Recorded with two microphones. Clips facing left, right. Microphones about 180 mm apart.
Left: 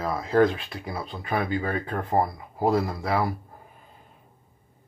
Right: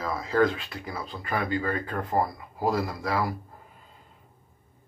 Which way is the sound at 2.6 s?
25° left (ahead or behind).